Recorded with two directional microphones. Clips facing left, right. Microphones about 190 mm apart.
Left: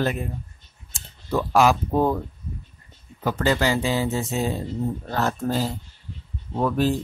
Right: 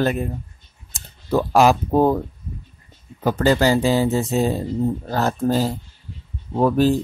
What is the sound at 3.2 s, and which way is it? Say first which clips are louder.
Speech: right 5 dB; 40° right (ahead or behind).